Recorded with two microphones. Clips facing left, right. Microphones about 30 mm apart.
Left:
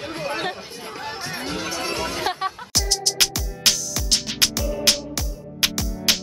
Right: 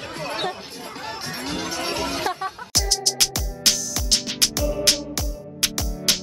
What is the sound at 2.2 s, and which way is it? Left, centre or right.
Music, left.